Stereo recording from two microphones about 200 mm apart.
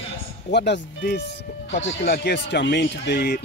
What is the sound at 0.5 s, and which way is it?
Speech, 60° left (ahead or behind).